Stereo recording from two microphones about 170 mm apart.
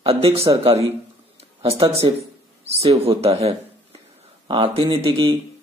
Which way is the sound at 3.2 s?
35° right (ahead or behind).